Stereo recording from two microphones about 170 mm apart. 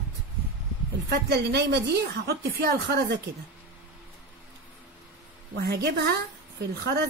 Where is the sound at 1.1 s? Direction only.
75° right (ahead or behind).